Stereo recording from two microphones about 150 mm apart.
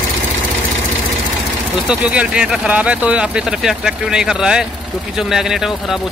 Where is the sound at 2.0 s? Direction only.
10° right (ahead or behind).